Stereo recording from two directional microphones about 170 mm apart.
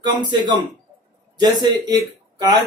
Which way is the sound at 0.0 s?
25° right (ahead or behind).